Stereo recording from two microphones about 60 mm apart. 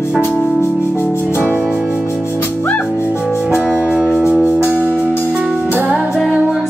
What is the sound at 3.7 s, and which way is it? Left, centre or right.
Music, centre.